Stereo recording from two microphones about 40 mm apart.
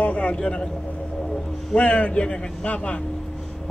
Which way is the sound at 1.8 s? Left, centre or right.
Left.